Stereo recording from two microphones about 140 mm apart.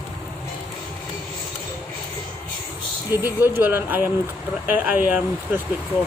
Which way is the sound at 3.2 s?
15° right (ahead or behind).